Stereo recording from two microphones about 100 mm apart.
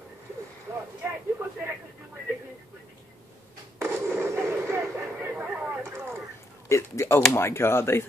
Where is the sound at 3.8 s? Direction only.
25° right (ahead or behind).